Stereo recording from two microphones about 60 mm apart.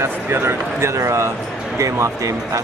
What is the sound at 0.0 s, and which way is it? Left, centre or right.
Speech, right.